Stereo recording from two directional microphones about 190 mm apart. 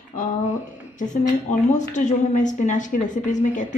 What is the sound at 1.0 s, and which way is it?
A woman's voice, 40° left (ahead or behind).